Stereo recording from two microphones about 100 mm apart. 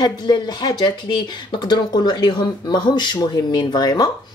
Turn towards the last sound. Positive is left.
turn(degrees=45)  # may be behind; listen again after turning